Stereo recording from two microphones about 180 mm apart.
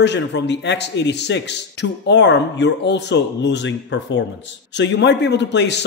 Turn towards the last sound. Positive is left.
turn(degrees=75)  # may be behind; listen again after turning